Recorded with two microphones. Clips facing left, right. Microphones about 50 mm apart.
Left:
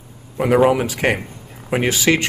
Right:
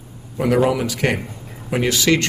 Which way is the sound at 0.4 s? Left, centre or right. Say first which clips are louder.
Left 3 dB; left.